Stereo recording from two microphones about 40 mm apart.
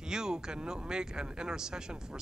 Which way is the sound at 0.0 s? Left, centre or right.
Centre.